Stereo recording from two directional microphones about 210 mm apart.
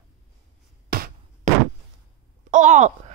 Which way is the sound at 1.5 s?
35° right (ahead or behind).